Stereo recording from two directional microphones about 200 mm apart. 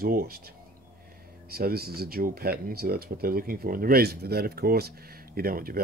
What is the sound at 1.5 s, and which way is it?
Speech, 50° right (ahead or behind).